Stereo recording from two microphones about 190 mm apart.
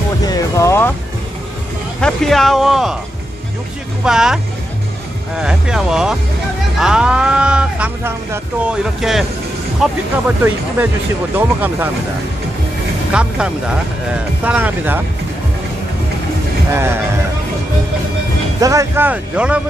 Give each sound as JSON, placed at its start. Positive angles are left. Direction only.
{"t": 0.2, "sound": "music", "side_deg": 20}
{"t": 2.0, "sound": "speech", "side_deg": 5}
{"t": 4.0, "sound": "speech", "side_deg": -5}
{"t": 5.4, "sound": "speech", "side_deg": -5}
{"t": 11.3, "sound": "speech", "side_deg": -10}
{"t": 13.1, "sound": "speech", "side_deg": -5}
{"t": 16.7, "sound": "speech", "side_deg": -10}
{"t": 18.6, "sound": "speech", "side_deg": -15}